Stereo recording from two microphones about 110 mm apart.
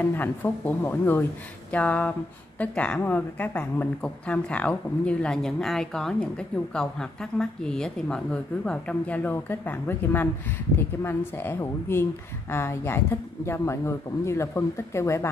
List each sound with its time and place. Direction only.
0.0 s a woman's voice: 20° left (ahead or behind)